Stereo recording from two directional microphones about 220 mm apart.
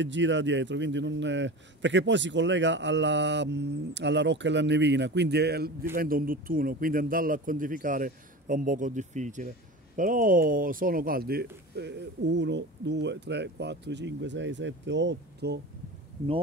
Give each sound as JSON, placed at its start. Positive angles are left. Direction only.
{"t": 0.0, "sound": "a man's voice", "side_deg": -55}